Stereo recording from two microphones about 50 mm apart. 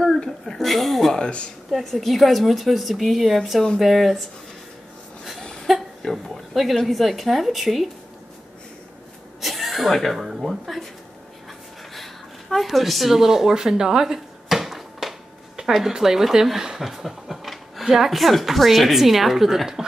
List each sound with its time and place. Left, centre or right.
0.0 s a woman's voice: centre
1.2 s speech: left
1.7 s a woman's voice: centre
5.7 s a sound: centre
6.1 s speech: centre
9.4 s speech: centre
11.9 s a sound: centre
17.8 s a woman's voice: centre